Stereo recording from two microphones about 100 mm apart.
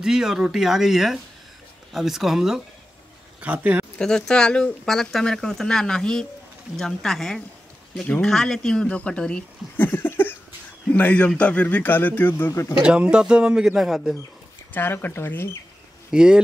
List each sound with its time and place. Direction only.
0.0 s speech: 5° right (ahead or behind)
3.3 s speech: 15° right (ahead or behind)
4.0 s a man's voice: 5° left (ahead or behind); by 12.7 s 25° left (ahead or behind)
12.8 s speech: 10° right (ahead or behind)
14.7 s speech: 20° left (ahead or behind)
16.1 s speech: 10° right (ahead or behind)